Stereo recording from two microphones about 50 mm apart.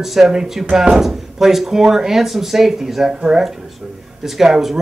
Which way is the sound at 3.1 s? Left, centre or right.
Centre.